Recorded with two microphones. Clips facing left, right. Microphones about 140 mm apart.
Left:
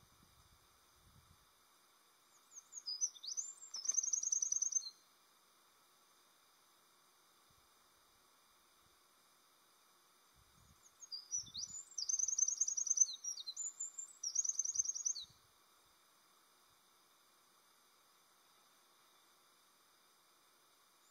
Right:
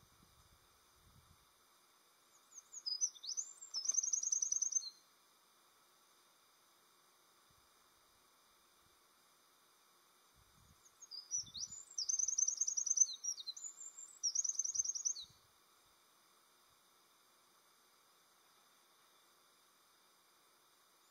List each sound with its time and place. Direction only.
2.5 s bird vocalization: centre (ahead or behind)
3.7 s chirp: centre (ahead or behind)
11.3 s chirp: centre (ahead or behind)